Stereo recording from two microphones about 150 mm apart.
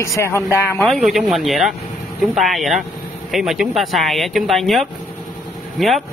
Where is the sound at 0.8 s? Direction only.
Centre (ahead or behind).